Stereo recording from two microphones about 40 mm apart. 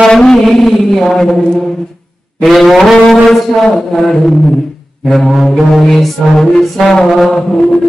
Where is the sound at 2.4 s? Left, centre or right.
Centre.